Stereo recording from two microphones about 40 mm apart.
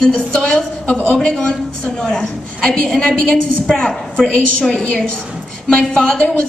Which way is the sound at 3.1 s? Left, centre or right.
Left.